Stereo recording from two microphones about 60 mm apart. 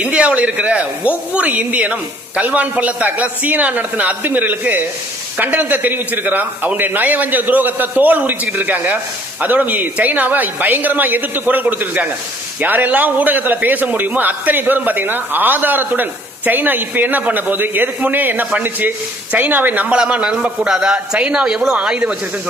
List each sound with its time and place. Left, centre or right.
0.0 s a man's voice: right